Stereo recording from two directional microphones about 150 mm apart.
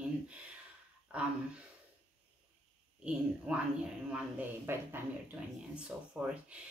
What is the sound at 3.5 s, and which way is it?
Speech, 5° right (ahead or behind).